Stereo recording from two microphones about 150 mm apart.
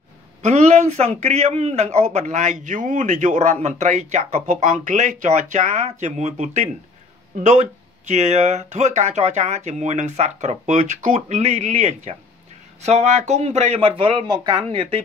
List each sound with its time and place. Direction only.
0.4 s a man's voice: 50° right (ahead or behind); by 15.0 s 35° right (ahead or behind)